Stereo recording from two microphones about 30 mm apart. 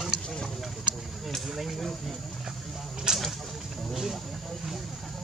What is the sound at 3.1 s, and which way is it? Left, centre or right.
Speech, right.